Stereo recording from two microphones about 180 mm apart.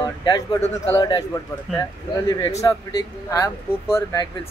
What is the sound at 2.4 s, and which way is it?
Speech, 20° left (ahead or behind).